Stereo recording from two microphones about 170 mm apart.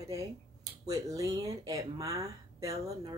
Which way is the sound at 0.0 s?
15° right (ahead or behind).